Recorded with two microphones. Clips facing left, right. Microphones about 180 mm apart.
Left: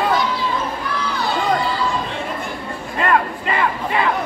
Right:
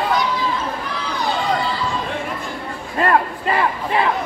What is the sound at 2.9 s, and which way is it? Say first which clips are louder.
Speech: right 1 dB; 35° right (ahead or behind).